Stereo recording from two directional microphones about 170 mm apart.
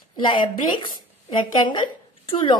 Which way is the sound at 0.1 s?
30° left (ahead or behind).